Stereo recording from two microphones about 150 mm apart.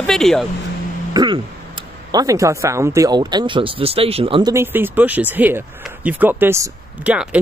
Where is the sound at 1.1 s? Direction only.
30° right (ahead or behind).